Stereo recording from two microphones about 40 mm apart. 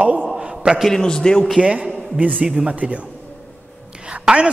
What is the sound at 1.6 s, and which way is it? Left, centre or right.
Speech, right.